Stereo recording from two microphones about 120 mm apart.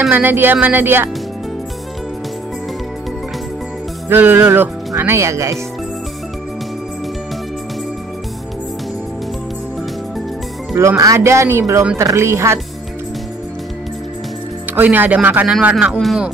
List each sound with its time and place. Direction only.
0.1 s speech: 15° right (ahead or behind)
4.1 s speech: 15° right (ahead or behind)
10.8 s speech: 25° right (ahead or behind)
14.7 s speech: 15° right (ahead or behind)